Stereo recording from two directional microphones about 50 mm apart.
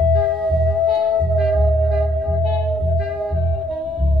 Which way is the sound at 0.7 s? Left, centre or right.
Centre.